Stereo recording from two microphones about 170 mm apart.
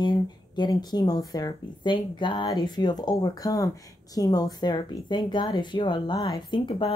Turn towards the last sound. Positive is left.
turn(degrees=25)  # may be behind; listen again after turning